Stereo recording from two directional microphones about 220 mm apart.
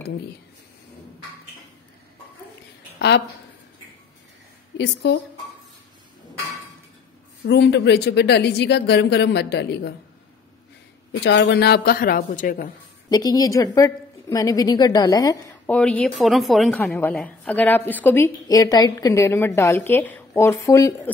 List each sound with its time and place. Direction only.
4.7 s a woman's voice: 50° left (ahead or behind)
7.4 s a woman's voice: 50° left (ahead or behind)
11.1 s a woman's voice: 55° left (ahead or behind); by 12.7 s 35° left (ahead or behind)
13.1 s a woman's voice: 15° left (ahead or behind)
15.6 s a woman's voice: 5° left (ahead or behind)